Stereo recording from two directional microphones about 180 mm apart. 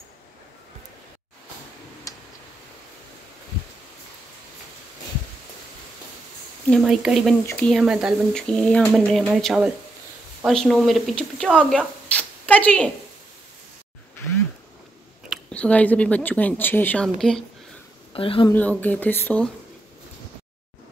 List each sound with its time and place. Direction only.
2.1 s tick: 20° left (ahead or behind)
6.7 s speech: centre (ahead or behind)
15.2 s speech: 5° left (ahead or behind)
18.1 s speech: 30° left (ahead or behind)
18.5 s speech: 10° left (ahead or behind)